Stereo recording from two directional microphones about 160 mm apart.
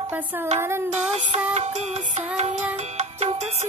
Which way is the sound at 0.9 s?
45° right (ahead or behind).